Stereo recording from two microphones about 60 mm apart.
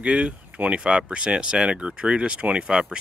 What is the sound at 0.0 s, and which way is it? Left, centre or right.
Speech, centre.